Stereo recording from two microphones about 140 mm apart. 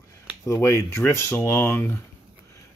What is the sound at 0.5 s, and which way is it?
Speech, 20° left (ahead or behind).